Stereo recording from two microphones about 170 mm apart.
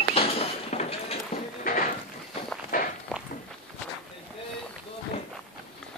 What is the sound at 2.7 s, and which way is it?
Walk, 55° left (ahead or behind).